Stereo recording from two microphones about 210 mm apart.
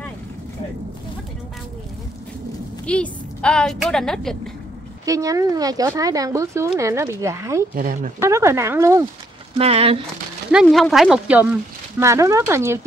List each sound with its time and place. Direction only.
2.9 s a woman's voice: 5° left (ahead or behind)
5.0 s speech: 15° right (ahead or behind)
7.7 s speech: 40° right (ahead or behind)
8.2 s speech: 15° right (ahead or behind)
9.6 s speech: 30° right (ahead or behind)
10.5 s a woman's voice: centre (ahead or behind)